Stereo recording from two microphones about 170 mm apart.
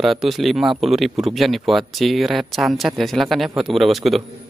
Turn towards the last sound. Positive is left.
turn(degrees=0)  # may be behind; listen again after turning